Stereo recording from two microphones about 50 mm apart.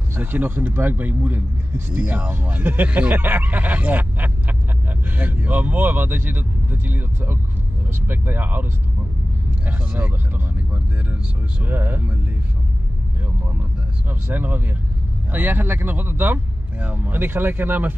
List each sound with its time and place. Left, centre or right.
0.1 s speech: right
9.7 s speech: right
11.6 s speech: right
14.3 s speech: right